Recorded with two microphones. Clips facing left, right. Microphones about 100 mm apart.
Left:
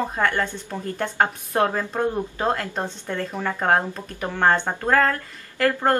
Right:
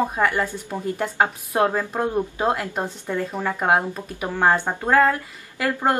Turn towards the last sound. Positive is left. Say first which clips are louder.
# left 2 dB
turn(degrees=-10)  # may be behind; listen again after turning